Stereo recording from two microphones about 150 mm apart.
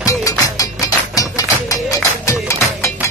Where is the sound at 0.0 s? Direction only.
20° left (ahead or behind).